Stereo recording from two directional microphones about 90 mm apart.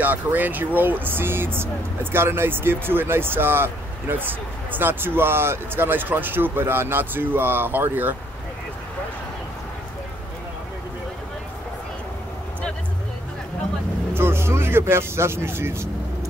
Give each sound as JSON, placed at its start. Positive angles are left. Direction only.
{"t": 0.0, "sound": "speech", "side_deg": -20}
{"t": 14.1, "sound": "speech", "side_deg": -30}